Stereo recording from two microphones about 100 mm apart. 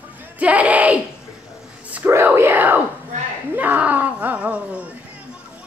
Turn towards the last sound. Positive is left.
turn(degrees=-15)  # may be behind; listen again after turning